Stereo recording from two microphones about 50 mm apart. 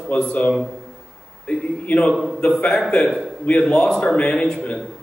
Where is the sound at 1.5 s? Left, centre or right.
Centre.